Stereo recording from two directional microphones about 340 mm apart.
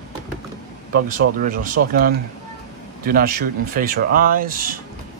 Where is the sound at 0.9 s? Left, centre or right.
Right.